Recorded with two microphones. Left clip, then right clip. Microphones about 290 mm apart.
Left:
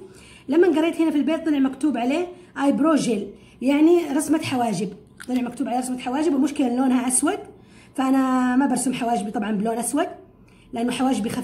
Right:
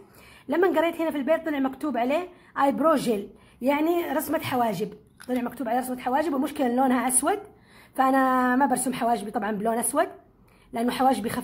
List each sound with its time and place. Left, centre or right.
0.5 s a man's voice: right